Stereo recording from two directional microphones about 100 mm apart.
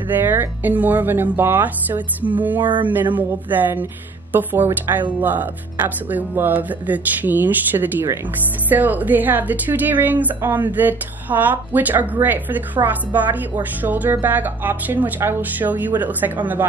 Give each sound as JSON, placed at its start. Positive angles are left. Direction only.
{"t": 0.1, "sound": "speech", "side_deg": -20}